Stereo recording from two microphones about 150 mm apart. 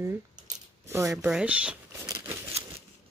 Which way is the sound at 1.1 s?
5° right (ahead or behind).